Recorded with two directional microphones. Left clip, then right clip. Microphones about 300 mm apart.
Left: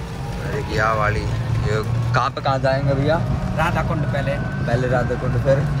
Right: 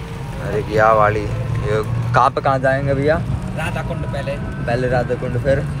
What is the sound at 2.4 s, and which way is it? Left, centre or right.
Speech, right.